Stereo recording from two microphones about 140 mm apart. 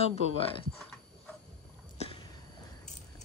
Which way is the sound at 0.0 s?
50° left (ahead or behind).